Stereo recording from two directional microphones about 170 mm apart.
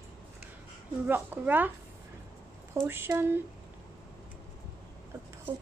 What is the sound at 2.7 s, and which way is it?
Speech, 15° right (ahead or behind).